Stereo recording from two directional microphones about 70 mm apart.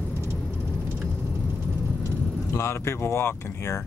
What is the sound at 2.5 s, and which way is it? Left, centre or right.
Speech, left.